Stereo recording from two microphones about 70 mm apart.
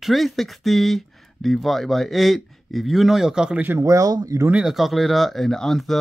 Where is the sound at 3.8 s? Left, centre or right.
Right.